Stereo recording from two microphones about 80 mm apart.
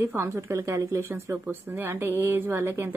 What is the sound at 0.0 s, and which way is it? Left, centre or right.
A woman's voice, right.